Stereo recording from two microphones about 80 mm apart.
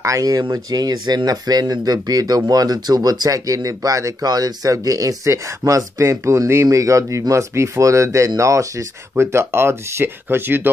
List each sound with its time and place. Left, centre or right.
0.0 s speech: right